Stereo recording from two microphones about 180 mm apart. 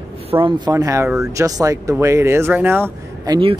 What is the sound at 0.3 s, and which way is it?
Speech, 25° right (ahead or behind).